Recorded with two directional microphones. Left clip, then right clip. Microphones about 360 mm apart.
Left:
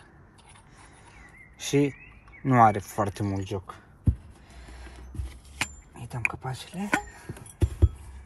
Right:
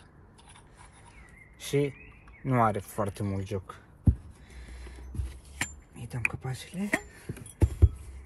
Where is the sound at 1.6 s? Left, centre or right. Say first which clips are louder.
Left 4 dB; centre.